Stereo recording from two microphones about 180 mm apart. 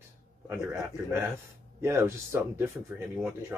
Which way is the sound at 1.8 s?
15° right (ahead or behind).